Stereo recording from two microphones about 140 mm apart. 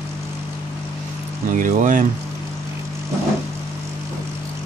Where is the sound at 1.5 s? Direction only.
70° right (ahead or behind).